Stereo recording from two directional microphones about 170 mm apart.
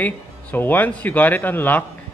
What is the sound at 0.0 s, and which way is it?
Speech, 10° left (ahead or behind).